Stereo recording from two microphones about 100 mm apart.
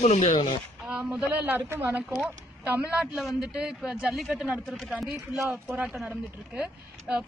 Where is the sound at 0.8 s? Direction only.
10° right (ahead or behind).